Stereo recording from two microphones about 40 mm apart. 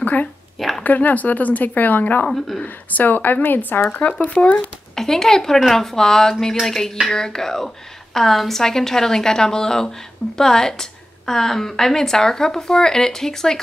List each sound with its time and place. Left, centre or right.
0.0 s speech: left
0.6 s a sound: centre
0.8 s speech: left
2.2 s a woman's voice: centre
2.6 s speech: left
4.9 s a woman's voice: centre